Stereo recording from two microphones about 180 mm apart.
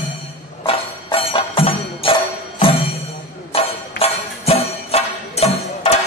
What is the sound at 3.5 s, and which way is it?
Music, 35° left (ahead or behind).